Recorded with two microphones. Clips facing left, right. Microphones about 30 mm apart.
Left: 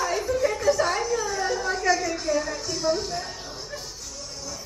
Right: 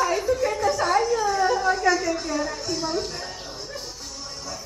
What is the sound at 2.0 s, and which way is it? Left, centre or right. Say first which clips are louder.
Speech: right 1 dB; centre.